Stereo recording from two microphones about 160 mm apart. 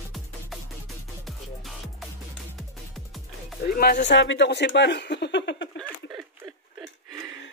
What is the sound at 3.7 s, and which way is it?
Speech, 70° left (ahead or behind).